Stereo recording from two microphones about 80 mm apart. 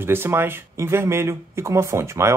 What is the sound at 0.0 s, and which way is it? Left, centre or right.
Speech, right.